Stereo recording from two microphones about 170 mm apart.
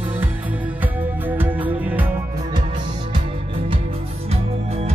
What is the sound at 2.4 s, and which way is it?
Music, 30° right (ahead or behind).